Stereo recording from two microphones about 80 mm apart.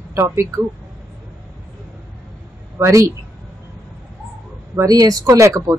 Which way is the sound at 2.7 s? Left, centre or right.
Right.